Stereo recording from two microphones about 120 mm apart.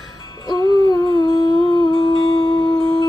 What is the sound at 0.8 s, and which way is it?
Humming, 35° left (ahead or behind).